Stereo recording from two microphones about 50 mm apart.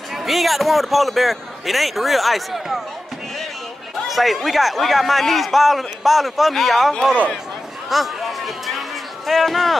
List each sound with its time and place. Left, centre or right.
0.2 s a man's voice: centre
4.1 s a man's voice: centre
7.9 s a sound: centre